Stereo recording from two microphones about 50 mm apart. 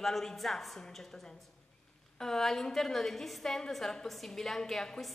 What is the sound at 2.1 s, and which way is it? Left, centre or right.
A woman's voice, centre.